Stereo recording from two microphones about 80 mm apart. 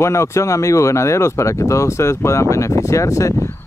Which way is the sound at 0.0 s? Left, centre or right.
Left.